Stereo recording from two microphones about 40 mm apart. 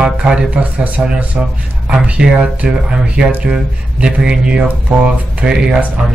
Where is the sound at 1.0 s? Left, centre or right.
Right.